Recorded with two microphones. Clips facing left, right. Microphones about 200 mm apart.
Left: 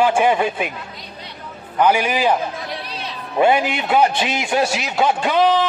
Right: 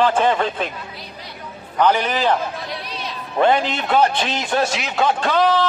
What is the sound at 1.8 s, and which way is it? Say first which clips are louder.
Speech: left 1 dB; 10° left (ahead or behind).